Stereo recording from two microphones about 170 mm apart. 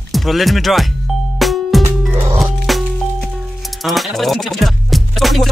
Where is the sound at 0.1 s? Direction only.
Centre (ahead or behind).